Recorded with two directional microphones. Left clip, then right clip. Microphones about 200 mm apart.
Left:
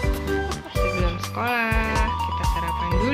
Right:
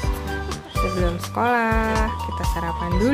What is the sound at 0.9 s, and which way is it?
Music, 20° right (ahead or behind).